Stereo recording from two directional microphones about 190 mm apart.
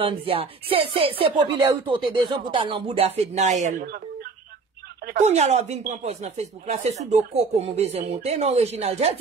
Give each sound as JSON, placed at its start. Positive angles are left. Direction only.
{"t": 0.0, "sound": "speech", "side_deg": -30}
{"t": 3.8, "sound": "telephone dialing", "side_deg": -55}
{"t": 5.2, "sound": "speech", "side_deg": -35}